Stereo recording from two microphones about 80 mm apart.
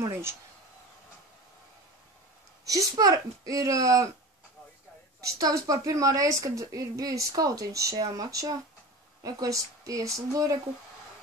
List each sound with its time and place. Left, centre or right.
0.0 s speech: right
2.6 s speech: right
5.2 s speech: right